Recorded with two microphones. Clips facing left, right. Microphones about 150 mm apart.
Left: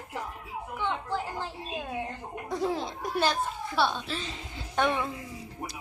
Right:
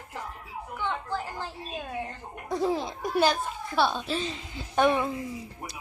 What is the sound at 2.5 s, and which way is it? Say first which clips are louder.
A child's voice: right 3 dB; 5° right (ahead or behind).